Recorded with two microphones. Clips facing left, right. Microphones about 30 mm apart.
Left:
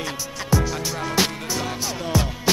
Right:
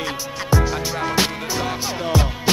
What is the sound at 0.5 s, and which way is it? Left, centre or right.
Music, centre.